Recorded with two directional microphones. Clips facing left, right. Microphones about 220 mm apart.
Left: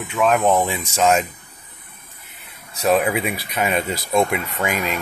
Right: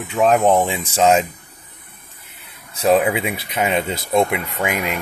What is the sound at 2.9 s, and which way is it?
Speech, 25° right (ahead or behind).